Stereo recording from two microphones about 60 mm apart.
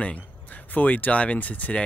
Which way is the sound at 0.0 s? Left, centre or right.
Left.